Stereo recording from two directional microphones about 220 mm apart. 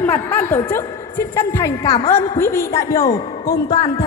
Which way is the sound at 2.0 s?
25° left (ahead or behind).